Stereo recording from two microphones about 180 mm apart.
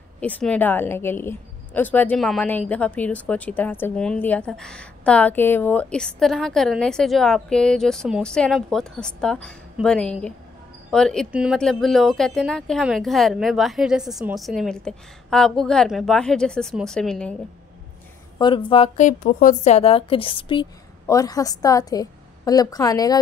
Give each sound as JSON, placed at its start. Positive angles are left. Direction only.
{"t": 0.2, "sound": "a woman's voice", "side_deg": 5}
{"t": 18.4, "sound": "a woman's voice", "side_deg": 25}
{"t": 18.9, "sound": "a woman's voice", "side_deg": 45}
{"t": 21.1, "sound": "a woman's voice", "side_deg": 20}